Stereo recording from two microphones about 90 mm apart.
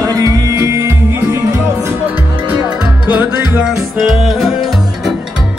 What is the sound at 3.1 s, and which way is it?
Music, 15° right (ahead or behind).